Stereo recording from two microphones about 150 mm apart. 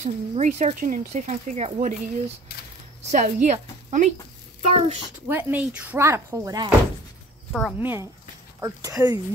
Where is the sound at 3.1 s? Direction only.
55° right (ahead or behind).